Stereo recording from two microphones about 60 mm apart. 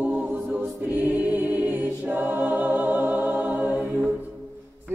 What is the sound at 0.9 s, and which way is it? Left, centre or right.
Choir, right.